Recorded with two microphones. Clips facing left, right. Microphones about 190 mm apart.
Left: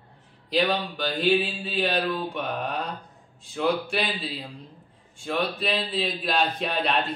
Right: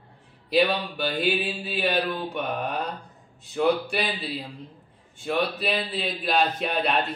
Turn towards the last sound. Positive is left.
turn(degrees=0)  # may be behind; listen again after turning